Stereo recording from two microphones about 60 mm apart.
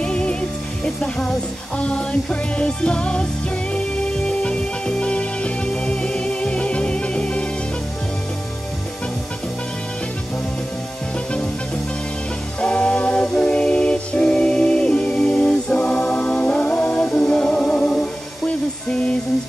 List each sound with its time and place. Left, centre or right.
0.0 s music: centre
0.8 s speech: centre
1.8 s music: centre
12.5 s music: left